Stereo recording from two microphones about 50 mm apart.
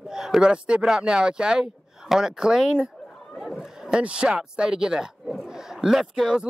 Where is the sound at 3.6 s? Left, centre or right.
Centre.